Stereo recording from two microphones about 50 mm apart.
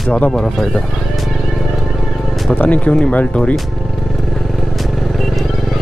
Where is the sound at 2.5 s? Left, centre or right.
Left.